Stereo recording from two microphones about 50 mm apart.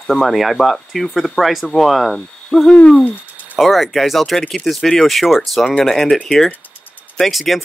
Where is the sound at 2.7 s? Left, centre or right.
Left.